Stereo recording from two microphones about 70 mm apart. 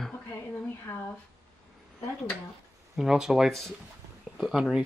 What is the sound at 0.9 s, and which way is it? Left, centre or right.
Speech, left.